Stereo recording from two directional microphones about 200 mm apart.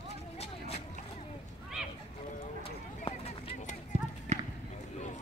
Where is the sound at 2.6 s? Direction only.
30° left (ahead or behind).